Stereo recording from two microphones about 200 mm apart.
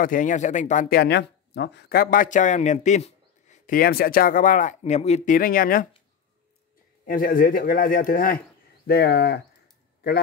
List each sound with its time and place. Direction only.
0.0 s speech: 40° left (ahead or behind)
7.1 s a man's voice: 45° left (ahead or behind)